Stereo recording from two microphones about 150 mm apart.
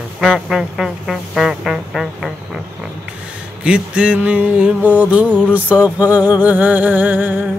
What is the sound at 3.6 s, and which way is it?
Music, 5° right (ahead or behind).